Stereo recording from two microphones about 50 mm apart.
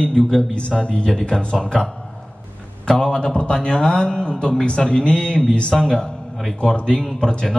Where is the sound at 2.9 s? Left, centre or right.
Centre.